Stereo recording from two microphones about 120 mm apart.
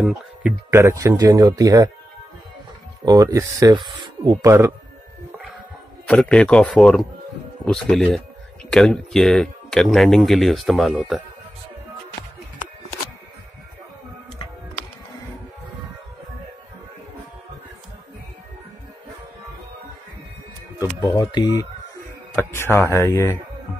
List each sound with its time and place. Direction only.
0.0 s a sound: 5° right (ahead or behind)
0.7 s speech: 25° right (ahead or behind)
3.1 s speech: 25° right (ahead or behind)
3.7 s speech: 40° right (ahead or behind); by 4.7 s 25° right (ahead or behind)
6.0 s a man's voice: 5° left (ahead or behind)
21.2 s speech: 35° left (ahead or behind)
22.3 s speech: 20° left (ahead or behind)